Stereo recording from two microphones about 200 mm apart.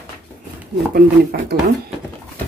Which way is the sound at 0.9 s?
50° right (ahead or behind).